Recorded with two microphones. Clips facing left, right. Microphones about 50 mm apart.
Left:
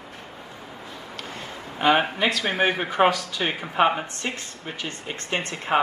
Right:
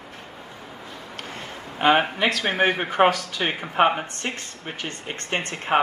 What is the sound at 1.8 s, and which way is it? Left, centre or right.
A man's voice, right.